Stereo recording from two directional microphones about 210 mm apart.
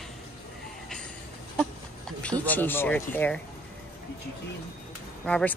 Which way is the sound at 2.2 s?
5° left (ahead or behind).